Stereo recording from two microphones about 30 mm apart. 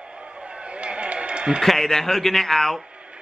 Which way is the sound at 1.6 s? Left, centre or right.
Centre.